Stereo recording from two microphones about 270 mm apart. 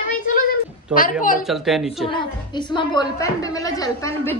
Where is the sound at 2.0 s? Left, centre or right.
Centre.